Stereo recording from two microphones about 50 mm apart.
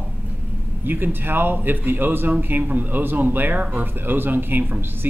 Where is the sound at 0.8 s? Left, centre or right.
Right.